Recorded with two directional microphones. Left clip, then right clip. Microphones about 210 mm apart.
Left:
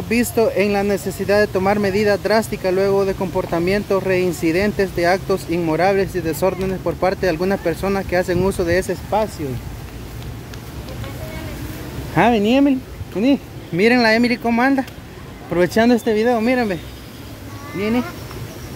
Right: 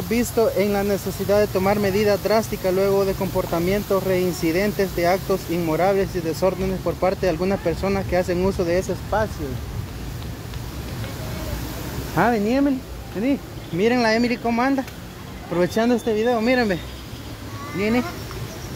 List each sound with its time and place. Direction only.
0.1 s speech: 15° left (ahead or behind)
12.2 s speech: 25° left (ahead or behind)
13.7 s speech: 25° left (ahead or behind)
16.4 s speech: 5° left (ahead or behind)